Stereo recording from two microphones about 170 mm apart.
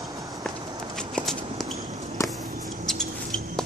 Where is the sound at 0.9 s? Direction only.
5° left (ahead or behind).